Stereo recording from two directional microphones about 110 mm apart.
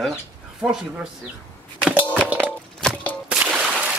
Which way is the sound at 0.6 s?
5° right (ahead or behind).